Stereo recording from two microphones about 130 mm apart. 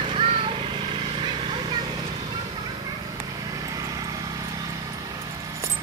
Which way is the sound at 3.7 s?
30° right (ahead or behind).